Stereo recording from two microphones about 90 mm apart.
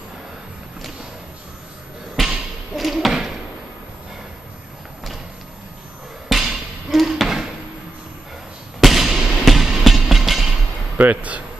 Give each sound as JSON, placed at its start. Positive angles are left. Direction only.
{"t": 2.1, "sound": "a sound", "side_deg": 0}
{"t": 6.2, "sound": "basketball bounce", "side_deg": 0}
{"t": 8.8, "sound": "music", "side_deg": 0}
{"t": 11.0, "sound": "speech", "side_deg": -15}